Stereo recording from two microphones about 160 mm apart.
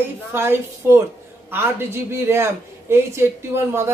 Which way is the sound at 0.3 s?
15° right (ahead or behind).